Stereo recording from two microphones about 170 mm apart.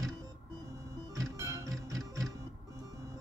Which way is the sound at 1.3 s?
15° right (ahead or behind).